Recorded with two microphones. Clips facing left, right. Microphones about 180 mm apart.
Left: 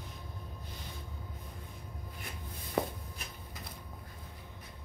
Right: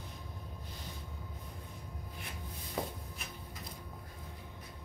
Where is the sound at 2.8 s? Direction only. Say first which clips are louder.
Left 5 dB; 65° left (ahead or behind).